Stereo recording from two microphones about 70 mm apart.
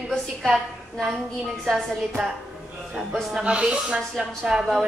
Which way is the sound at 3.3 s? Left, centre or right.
Centre.